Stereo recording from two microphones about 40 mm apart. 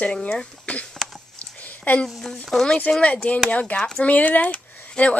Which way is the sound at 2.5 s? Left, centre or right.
Centre.